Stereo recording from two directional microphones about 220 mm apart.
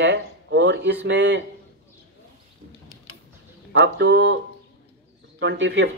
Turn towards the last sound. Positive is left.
turn(degrees=-55)  # may be behind; listen again after turning